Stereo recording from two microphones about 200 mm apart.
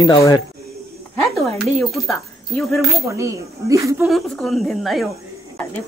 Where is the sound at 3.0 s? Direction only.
15° right (ahead or behind).